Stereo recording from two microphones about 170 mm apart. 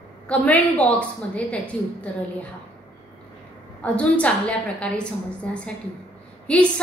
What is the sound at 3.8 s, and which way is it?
A woman's voice, 5° left (ahead or behind).